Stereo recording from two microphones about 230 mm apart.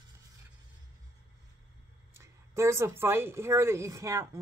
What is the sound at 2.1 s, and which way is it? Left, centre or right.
Speech, centre.